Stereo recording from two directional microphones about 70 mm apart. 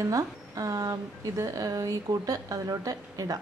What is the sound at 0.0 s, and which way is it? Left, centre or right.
A woman's voice, right.